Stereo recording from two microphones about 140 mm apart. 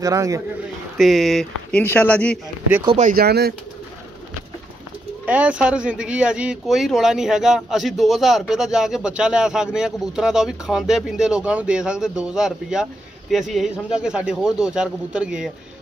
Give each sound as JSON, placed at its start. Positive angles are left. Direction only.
{"t": 0.0, "sound": "a man's voice", "side_deg": -25}
{"t": 0.9, "sound": "speech", "side_deg": 0}
{"t": 3.0, "sound": "speech", "side_deg": -80}
{"t": 5.2, "sound": "speech", "side_deg": -10}